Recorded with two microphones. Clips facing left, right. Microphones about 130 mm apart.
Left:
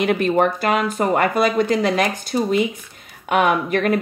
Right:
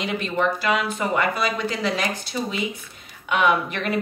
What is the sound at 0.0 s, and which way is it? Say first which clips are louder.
Speech: left 7 dB; 55° left (ahead or behind).